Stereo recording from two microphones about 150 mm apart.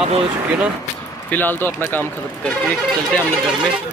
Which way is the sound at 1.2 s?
10° left (ahead or behind).